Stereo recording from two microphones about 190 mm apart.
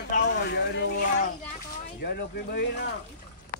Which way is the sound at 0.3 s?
65° left (ahead or behind).